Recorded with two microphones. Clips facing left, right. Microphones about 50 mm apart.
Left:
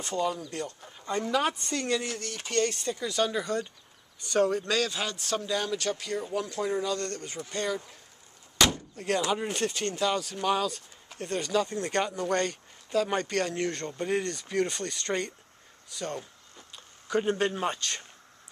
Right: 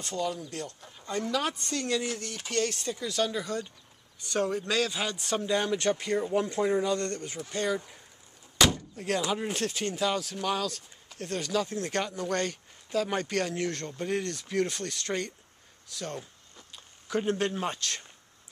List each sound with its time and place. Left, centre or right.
0.0 s speech: centre
7.2 s speech: centre